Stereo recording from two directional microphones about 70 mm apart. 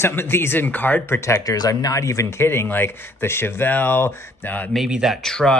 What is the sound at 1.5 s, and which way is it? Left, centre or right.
Speech, left.